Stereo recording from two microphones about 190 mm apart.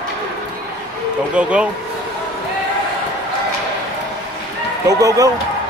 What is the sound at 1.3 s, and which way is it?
Speech, 5° right (ahead or behind).